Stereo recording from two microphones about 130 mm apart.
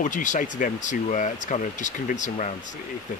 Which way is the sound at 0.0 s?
75° left (ahead or behind).